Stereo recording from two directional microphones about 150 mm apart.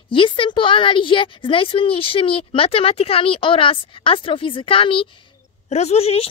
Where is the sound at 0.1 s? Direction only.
35° left (ahead or behind).